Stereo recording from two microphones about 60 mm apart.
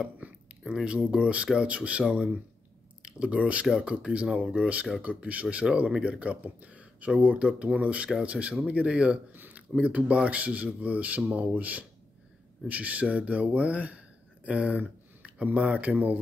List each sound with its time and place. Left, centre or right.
0.0 s a sound: centre
0.8 s speech: centre
9.3 s speech: right